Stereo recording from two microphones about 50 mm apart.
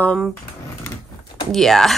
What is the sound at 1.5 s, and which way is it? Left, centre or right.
Speech, centre.